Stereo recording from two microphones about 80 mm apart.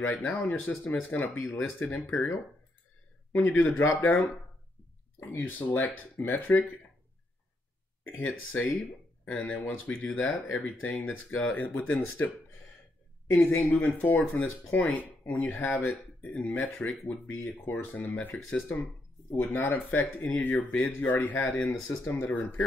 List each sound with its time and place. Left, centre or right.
0.0 s speech: left
3.3 s a man's voice: centre
5.3 s speech: left
8.3 s speech: left
13.3 s speech: left